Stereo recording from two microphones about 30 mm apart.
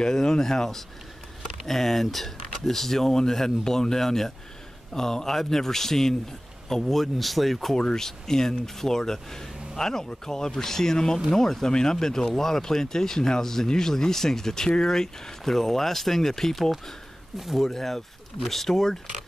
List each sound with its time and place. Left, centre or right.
0.0 s speech: centre
7.7 s speech: centre
17.6 s speech: centre